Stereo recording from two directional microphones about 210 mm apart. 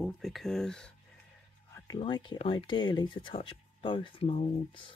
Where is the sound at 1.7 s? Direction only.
15° left (ahead or behind).